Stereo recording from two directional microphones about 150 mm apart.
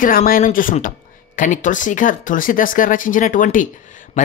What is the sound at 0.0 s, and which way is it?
Speech, 70° left (ahead or behind).